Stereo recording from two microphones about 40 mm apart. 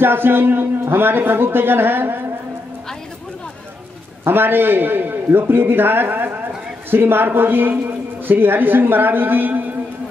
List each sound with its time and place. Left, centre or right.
0.0 s a man's voice: right
4.3 s a man's voice: right